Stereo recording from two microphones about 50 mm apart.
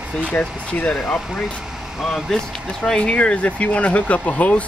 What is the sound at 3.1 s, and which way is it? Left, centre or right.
Speech, left.